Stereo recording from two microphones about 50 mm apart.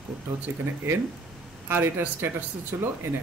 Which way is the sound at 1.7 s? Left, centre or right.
Right.